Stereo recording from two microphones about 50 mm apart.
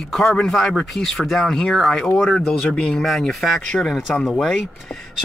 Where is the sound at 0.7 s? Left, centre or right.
Centre.